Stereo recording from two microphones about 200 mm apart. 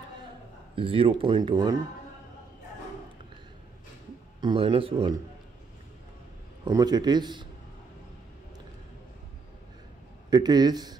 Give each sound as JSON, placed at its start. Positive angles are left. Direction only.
{"t": 0.7, "sound": "speech", "side_deg": -25}
{"t": 4.4, "sound": "speech", "side_deg": -25}
{"t": 6.6, "sound": "speech", "side_deg": -20}
{"t": 10.3, "sound": "speech", "side_deg": -20}